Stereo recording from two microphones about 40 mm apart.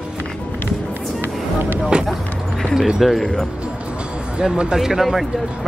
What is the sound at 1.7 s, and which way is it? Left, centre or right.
Speech, right.